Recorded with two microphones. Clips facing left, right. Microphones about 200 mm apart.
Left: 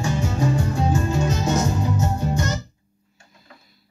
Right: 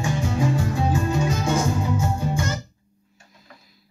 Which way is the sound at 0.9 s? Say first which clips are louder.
Even; centre (ahead or behind).